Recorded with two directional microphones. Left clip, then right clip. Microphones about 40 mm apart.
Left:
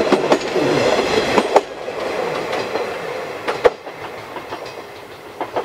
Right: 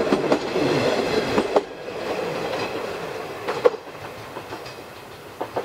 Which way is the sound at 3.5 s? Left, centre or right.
Centre.